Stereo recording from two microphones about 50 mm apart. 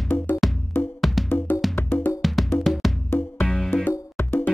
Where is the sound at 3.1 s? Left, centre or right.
Left.